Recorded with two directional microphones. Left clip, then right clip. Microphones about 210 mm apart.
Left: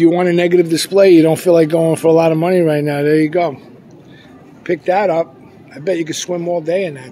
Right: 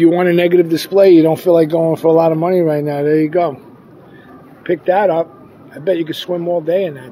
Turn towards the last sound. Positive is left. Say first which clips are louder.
# right 1 dB
turn(degrees=5)  # may be behind; listen again after turning